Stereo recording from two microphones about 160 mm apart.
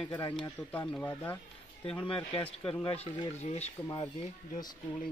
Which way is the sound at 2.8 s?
40° left (ahead or behind).